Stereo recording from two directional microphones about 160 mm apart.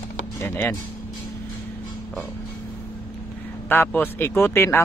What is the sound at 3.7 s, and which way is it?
Speech, 15° left (ahead or behind).